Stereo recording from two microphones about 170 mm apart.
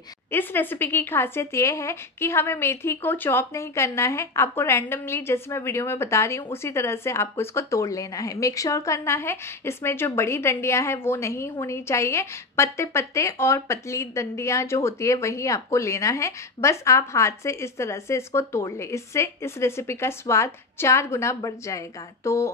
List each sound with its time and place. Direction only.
0.3 s speech: 10° left (ahead or behind)